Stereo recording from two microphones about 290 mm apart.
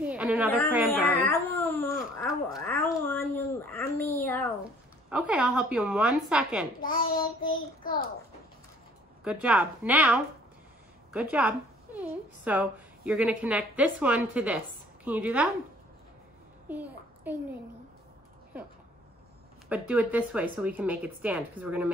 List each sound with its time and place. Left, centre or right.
0.0 s a sound: centre
5.1 s a woman's voice: centre
6.8 s a child's voice: left
9.2 s a woman's voice: centre
16.6 s a sound: centre
19.7 s a woman's voice: centre